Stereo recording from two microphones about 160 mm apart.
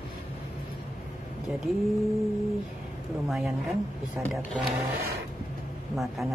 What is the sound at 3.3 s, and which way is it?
Speech, centre (ahead or behind).